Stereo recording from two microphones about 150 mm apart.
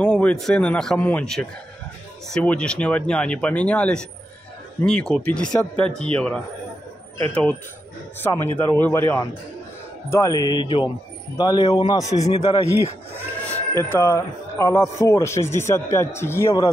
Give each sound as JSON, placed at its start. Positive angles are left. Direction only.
{"t": 0.0, "sound": "a man's voice", "side_deg": 5}
{"t": 12.2, "sound": "a man's voice", "side_deg": 50}
{"t": 13.1, "sound": "sheep", "side_deg": 15}
{"t": 13.9, "sound": "a man's voice", "side_deg": 20}